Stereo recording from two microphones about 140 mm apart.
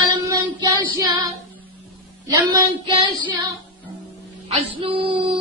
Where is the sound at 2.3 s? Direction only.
35° right (ahead or behind).